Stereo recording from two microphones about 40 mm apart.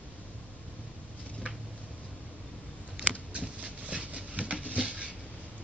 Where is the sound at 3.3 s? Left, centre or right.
Right.